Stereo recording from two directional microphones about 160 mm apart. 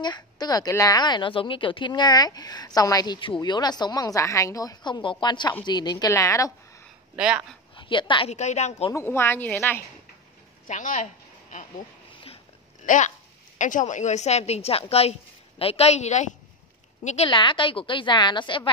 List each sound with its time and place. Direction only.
0.0 s a woman's voice: 25° left (ahead or behind)
7.2 s speech: 5° right (ahead or behind)
7.7 s a woman's voice: 30° left (ahead or behind)
8.3 s a woman's voice: 45° left (ahead or behind)
8.9 s speech: 15° left (ahead or behind)
10.7 s a woman's voice: 50° left (ahead or behind)
12.8 s a woman's voice: 50° left (ahead or behind)
17.3 s a woman's voice: 30° left (ahead or behind)